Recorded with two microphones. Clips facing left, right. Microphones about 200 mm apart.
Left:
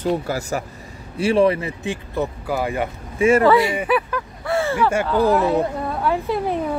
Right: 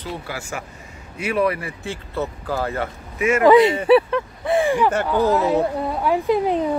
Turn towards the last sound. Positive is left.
turn(degrees=-15)  # may be behind; listen again after turning